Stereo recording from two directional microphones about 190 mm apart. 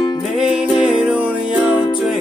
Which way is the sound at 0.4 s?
5° right (ahead or behind).